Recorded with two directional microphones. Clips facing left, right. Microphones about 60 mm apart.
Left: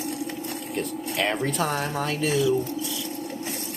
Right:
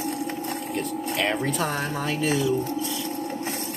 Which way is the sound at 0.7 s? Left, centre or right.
Centre.